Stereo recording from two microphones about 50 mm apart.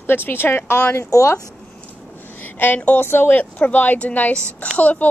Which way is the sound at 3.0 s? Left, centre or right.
Left.